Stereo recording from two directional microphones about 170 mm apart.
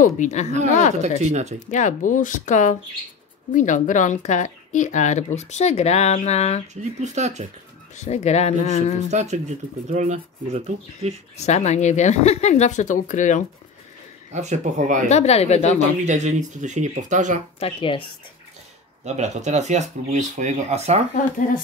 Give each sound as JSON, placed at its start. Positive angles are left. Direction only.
{"t": 0.0, "sound": "speech", "side_deg": 45}
{"t": 1.0, "sound": "speech", "side_deg": -45}
{"t": 1.7, "sound": "speech", "side_deg": 45}
{"t": 6.7, "sound": "speech", "side_deg": -45}
{"t": 7.9, "sound": "speech", "side_deg": 40}
{"t": 9.1, "sound": "speech", "side_deg": -45}
{"t": 11.3, "sound": "speech", "side_deg": 40}
{"t": 14.3, "sound": "speech", "side_deg": -45}
{"t": 15.0, "sound": "speech", "side_deg": 40}
{"t": 16.1, "sound": "speech", "side_deg": -45}
{"t": 17.6, "sound": "speech", "side_deg": 35}
{"t": 19.0, "sound": "speech", "side_deg": -45}